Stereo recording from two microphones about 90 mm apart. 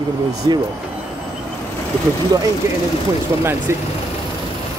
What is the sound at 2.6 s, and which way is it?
Speech, 30° right (ahead or behind).